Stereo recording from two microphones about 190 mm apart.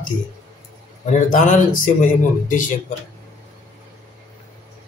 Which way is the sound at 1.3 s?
45° left (ahead or behind).